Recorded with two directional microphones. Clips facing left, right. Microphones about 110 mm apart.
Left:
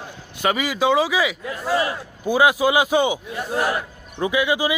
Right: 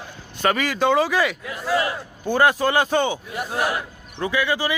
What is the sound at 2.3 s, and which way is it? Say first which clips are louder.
Speech: left 1 dB; 10° left (ahead or behind).